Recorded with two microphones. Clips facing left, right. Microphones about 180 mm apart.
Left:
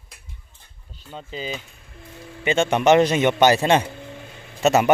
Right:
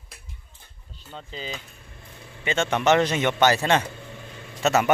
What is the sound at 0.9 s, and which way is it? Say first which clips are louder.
A man's voice: left 4 dB; 10° left (ahead or behind).